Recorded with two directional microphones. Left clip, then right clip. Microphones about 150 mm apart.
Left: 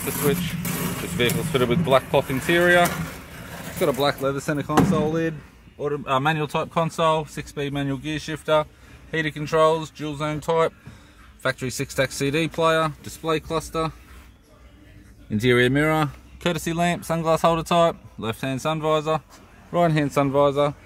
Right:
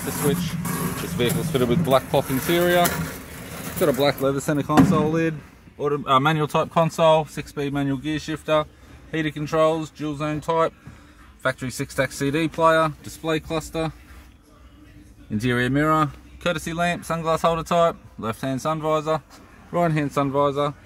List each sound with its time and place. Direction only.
0.3 s speech: 5° left (ahead or behind)
2.9 s vehicle: 45° right (ahead or behind)
4.0 s a man's voice: centre (ahead or behind)
7.5 s speech: 15° left (ahead or behind)
15.3 s speech: 40° left (ahead or behind)